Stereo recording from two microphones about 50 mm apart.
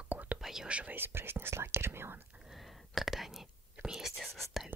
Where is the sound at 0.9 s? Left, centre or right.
Right.